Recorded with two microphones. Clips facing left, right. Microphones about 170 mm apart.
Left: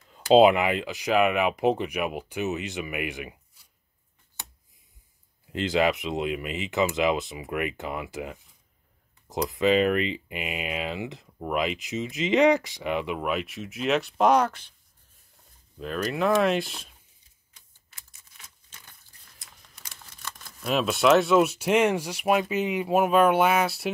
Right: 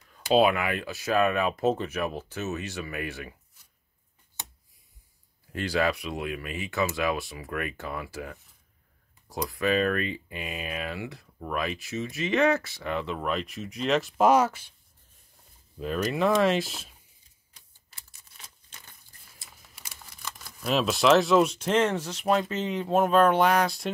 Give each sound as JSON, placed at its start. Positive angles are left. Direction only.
{"t": 0.1, "sound": "speech", "side_deg": 25}
{"t": 5.5, "sound": "speech", "side_deg": 20}
{"t": 15.8, "sound": "speech", "side_deg": 0}
{"t": 17.6, "sound": "typewriter", "side_deg": -35}
{"t": 19.3, "sound": "speech", "side_deg": -5}